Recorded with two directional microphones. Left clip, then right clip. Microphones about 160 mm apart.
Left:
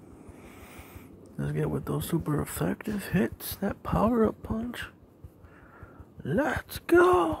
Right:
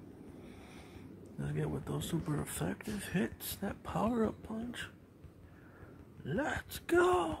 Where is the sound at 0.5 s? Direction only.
40° left (ahead or behind).